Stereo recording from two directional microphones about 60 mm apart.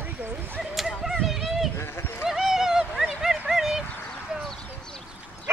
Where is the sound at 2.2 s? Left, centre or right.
Centre.